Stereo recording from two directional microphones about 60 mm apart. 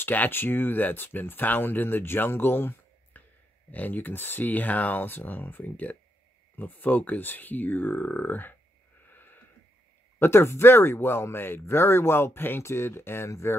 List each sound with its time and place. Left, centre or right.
0.0 s speech: left
9.0 s a sound: left
10.1 s speech: left